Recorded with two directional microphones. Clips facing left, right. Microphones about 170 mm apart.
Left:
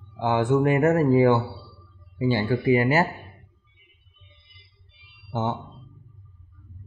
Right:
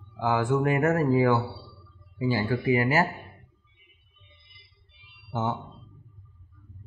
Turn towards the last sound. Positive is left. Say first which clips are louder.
# left 2 dB
turn(degrees=25)  # may be behind; listen again after turning